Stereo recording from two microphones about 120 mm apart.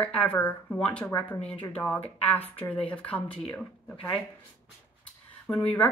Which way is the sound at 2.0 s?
55° left (ahead or behind).